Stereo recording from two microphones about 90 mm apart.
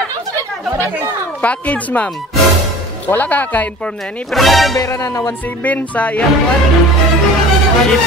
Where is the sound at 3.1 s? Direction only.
20° left (ahead or behind).